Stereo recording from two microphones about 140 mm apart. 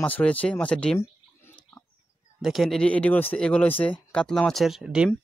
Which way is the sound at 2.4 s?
Centre (ahead or behind).